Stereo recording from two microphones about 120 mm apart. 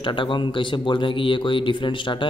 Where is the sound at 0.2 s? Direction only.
40° left (ahead or behind).